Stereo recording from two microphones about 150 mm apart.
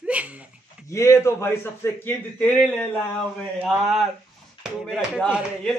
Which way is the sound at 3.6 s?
Centre (ahead or behind).